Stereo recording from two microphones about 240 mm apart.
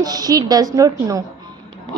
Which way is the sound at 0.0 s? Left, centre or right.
Centre.